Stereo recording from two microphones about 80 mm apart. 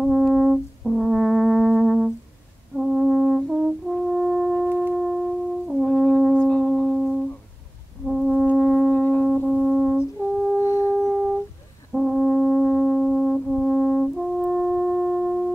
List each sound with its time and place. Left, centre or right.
0.0 s brass instrument: centre
6.3 s foghorn: centre
6.9 s music: centre
8.5 s foghorn: centre
9.2 s brass instrument: centre
10.6 s singing bowl: left
11.0 s music: centre
11.9 s brass instrument: centre